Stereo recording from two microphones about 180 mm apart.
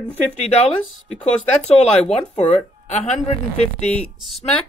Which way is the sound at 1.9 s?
40° left (ahead or behind).